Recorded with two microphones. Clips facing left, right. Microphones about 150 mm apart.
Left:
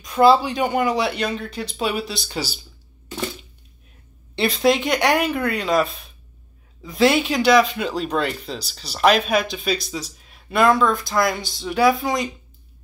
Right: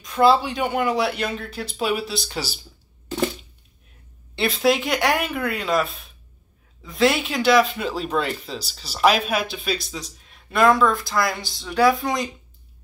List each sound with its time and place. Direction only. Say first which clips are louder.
0.0 s speech: left 2 dB; centre (ahead or behind)
4.4 s speech: left 2 dB; centre (ahead or behind)